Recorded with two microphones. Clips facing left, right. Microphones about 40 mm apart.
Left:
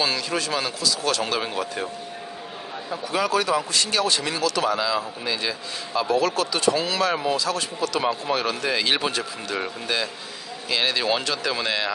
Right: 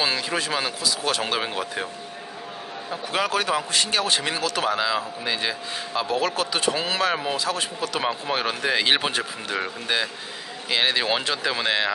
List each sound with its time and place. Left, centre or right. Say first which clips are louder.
0.0 s a man's voice: even; centre
3.1 s a man's voice: left 1 dB; right
10.7 s a man's voice: right 1 dB; right